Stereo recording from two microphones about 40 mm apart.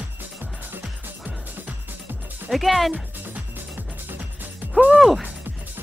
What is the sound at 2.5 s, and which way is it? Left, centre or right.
Speech, centre.